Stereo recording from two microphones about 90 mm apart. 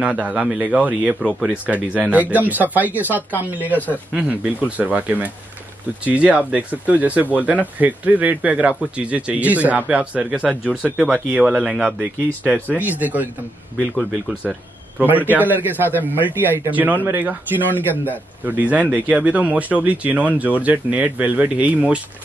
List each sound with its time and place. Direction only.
0.0 s speech: 15° right (ahead or behind)
12.6 s speech: 20° right (ahead or behind)
15.0 s speech: 20° right (ahead or behind)